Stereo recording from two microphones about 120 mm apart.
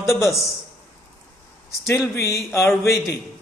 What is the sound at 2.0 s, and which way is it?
Speech, 25° left (ahead or behind).